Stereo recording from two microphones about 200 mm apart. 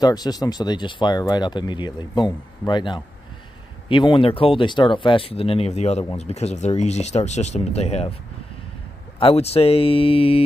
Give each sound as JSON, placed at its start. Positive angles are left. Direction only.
{"t": 0.0, "sound": "speech", "side_deg": 20}
{"t": 9.2, "sound": "speech", "side_deg": 30}